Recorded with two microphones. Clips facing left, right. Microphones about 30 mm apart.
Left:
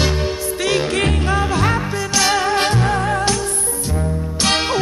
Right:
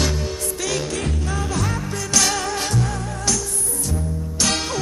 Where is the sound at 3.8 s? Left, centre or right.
Left.